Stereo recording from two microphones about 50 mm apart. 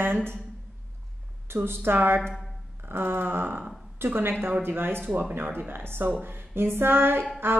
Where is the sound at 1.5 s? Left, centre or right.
Right.